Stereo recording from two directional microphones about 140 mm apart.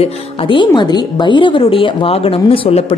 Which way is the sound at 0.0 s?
35° left (ahead or behind).